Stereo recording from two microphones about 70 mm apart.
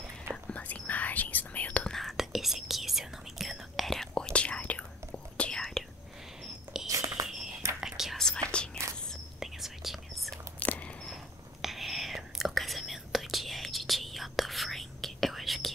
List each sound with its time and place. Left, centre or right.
0.5 s whispering: centre
1.9 s whispering: centre
6.4 s biting: centre
7.2 s a sound: right
7.8 s whispering: centre
8.4 s whispering: right
9.4 s whispering: centre
10.6 s a sound: left
11.6 s whispering: centre